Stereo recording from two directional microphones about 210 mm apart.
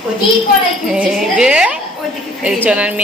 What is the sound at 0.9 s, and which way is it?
A woman's voice, 5° right (ahead or behind).